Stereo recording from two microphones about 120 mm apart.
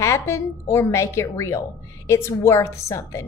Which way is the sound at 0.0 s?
25° left (ahead or behind).